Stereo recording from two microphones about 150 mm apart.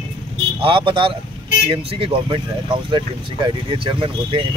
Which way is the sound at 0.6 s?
35° right (ahead or behind).